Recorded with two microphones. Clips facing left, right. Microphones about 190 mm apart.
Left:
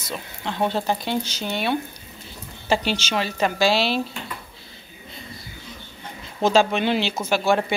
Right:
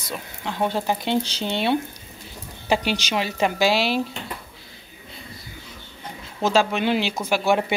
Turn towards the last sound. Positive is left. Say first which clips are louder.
# even
turn(degrees=-15)  # may be behind; listen again after turning